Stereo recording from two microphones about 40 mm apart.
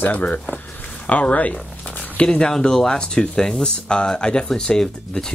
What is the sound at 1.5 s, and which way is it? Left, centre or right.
Zipper, left.